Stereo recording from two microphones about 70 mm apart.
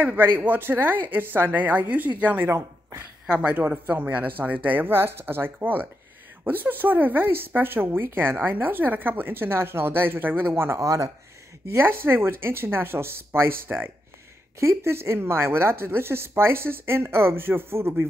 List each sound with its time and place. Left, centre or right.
0.0 s speech: right
10.8 s speech: right
11.6 s speech: right